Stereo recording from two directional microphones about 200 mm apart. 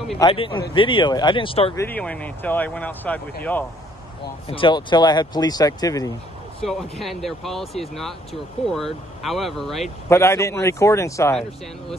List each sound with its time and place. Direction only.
0.2 s speech: 25° left (ahead or behind)
1.8 s speech: 10° left (ahead or behind)
4.5 s speech: 25° left (ahead or behind)
6.6 s speech: centre (ahead or behind)
10.0 s speech: 15° left (ahead or behind)